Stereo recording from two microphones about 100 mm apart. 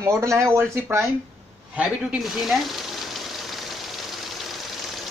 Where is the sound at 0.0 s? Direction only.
30° right (ahead or behind).